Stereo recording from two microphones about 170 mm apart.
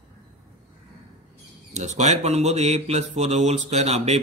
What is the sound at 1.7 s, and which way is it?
Speech, 40° right (ahead or behind).